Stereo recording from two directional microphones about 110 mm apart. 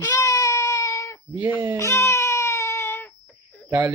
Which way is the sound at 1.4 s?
15° right (ahead or behind).